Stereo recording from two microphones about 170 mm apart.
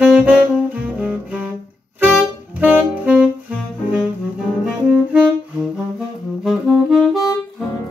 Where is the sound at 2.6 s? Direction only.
10° right (ahead or behind).